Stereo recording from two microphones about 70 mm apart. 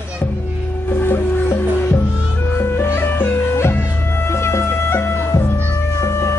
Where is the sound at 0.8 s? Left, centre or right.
Left.